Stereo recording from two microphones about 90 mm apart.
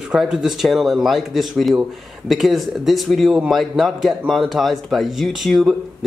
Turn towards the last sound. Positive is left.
turn(degrees=0)  # may be behind; listen again after turning